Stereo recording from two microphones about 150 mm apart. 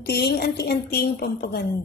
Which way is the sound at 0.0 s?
90° left.